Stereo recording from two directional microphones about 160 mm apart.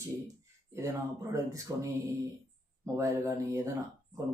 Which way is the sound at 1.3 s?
20° right (ahead or behind).